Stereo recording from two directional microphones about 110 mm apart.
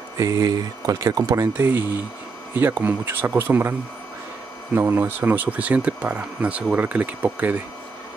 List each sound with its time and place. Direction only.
0.2 s speech: 30° right (ahead or behind)
4.7 s speech: 20° right (ahead or behind)